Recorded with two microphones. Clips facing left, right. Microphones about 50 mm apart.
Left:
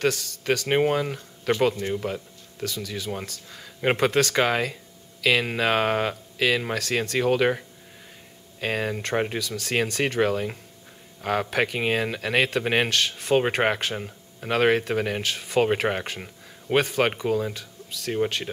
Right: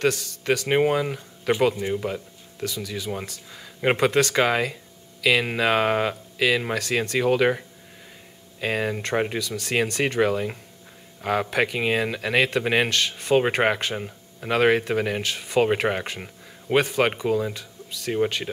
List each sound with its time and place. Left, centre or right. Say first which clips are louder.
0.0 s speech: right 1 dB; centre